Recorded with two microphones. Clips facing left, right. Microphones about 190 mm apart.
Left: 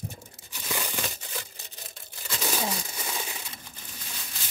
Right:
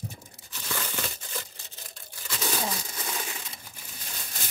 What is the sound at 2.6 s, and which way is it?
Crumpling, 5° left (ahead or behind).